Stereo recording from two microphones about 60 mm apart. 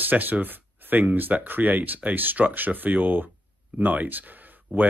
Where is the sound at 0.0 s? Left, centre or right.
Right.